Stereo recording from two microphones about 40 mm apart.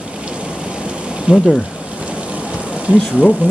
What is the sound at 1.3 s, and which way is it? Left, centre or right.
Speech, right.